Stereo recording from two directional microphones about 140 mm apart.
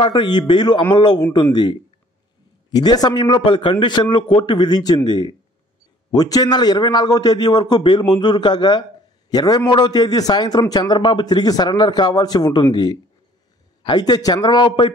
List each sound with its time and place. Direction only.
0.0 s a man's voice: 35° left (ahead or behind)
13.8 s a man's voice: 30° left (ahead or behind)